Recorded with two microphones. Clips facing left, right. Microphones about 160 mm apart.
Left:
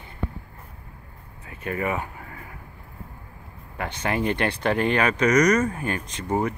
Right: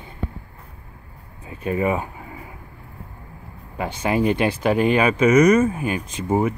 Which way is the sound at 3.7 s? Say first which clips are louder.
Right 5 dB; 15° right (ahead or behind).